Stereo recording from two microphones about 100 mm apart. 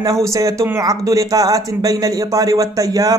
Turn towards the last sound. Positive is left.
turn(degrees=-35)  # may be behind; listen again after turning